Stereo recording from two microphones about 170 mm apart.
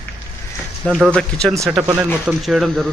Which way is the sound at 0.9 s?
5° right (ahead or behind).